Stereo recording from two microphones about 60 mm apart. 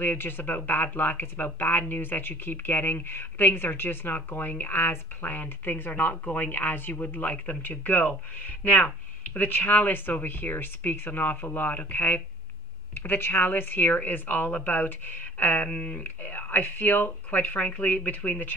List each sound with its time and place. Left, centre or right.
0.0 s speech: left; by 16.0 s centre
16.0 s speech: left